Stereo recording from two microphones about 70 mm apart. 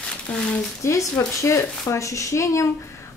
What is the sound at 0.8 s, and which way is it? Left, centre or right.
A woman's voice, left.